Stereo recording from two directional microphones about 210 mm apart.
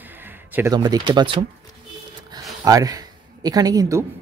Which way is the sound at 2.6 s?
15° right (ahead or behind).